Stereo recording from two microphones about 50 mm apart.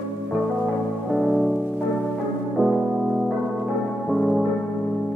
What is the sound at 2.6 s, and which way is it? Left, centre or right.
Music, right.